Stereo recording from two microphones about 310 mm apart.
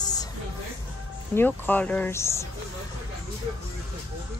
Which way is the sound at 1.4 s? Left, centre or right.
Centre.